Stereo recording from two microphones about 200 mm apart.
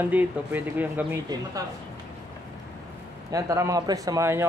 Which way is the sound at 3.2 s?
15° right (ahead or behind).